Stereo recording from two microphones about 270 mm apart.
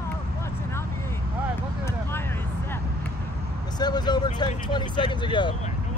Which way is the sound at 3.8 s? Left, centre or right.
Centre.